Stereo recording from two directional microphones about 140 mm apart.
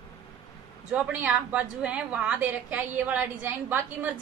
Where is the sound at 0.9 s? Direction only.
10° right (ahead or behind).